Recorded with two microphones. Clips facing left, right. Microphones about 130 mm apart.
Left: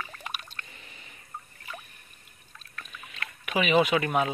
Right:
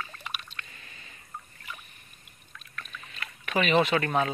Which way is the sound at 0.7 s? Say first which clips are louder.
Left 1 dB; 20° left (ahead or behind).